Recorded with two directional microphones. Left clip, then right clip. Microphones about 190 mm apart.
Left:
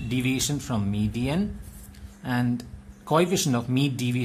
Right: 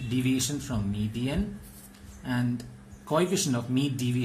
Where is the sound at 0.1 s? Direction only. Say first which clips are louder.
Left 2 dB; 45° left (ahead or behind).